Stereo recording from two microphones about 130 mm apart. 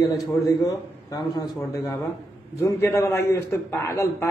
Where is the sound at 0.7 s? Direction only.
30° left (ahead or behind).